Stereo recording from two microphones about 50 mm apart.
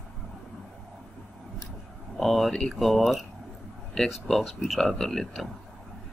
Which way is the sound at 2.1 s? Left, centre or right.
Centre.